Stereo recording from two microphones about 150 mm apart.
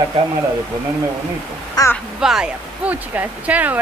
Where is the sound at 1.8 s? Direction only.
25° left (ahead or behind).